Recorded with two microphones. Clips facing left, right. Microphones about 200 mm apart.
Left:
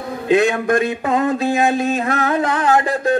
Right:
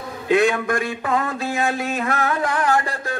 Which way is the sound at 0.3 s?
20° left (ahead or behind).